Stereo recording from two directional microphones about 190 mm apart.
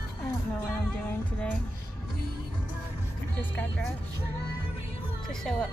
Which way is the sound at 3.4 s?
5° left (ahead or behind).